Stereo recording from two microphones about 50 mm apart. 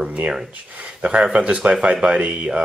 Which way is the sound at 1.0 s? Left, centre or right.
Right.